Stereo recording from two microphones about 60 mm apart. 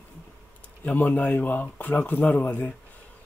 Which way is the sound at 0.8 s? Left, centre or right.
Left.